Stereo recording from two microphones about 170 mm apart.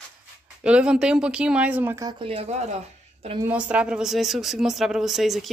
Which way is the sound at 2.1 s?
30° right (ahead or behind).